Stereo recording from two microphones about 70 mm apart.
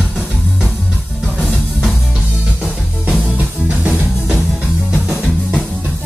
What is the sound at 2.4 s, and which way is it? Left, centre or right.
Music, centre.